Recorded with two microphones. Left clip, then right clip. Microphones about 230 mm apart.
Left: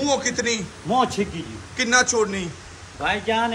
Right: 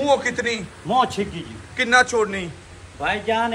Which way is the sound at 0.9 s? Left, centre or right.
Right.